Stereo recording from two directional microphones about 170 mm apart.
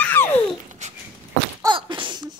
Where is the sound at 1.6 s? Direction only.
25° right (ahead or behind).